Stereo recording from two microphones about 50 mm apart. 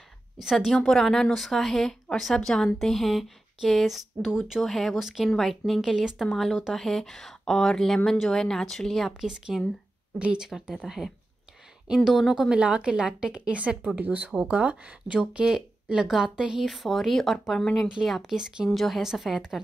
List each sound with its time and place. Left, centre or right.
0.4 s a woman's voice: centre
0.8 s a woman's voice: centre
4.6 s a woman's voice: centre
4.9 s a woman's voice: centre
5.3 s a woman's voice: centre
5.8 s a woman's voice: centre
9.2 s a woman's voice: centre
10.4 s a woman's voice: centre
12.5 s a woman's voice: right
13.9 s a woman's voice: right; by 16.6 s centre
16.6 s a woman's voice: centre
18.0 s a woman's voice: centre
18.7 s a woman's voice: centre